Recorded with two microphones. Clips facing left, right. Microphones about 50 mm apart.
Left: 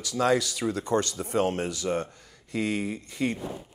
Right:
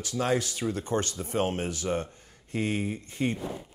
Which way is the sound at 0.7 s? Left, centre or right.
Left.